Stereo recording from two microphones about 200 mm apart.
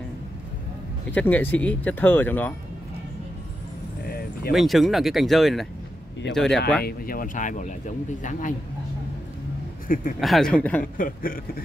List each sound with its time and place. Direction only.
1.1 s speech: 10° left (ahead or behind)
4.5 s speech: centre (ahead or behind)
6.8 s speech: 50° left (ahead or behind)
9.9 s speech: 45° left (ahead or behind)
10.2 s speech: centre (ahead or behind)
11.0 s speech: 45° left (ahead or behind)